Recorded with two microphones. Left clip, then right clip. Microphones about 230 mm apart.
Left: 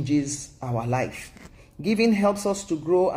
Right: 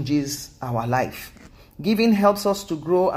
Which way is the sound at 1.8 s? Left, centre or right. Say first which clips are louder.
Right 3 dB; centre.